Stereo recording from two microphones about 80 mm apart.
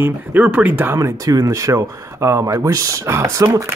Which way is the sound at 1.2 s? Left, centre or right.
Right.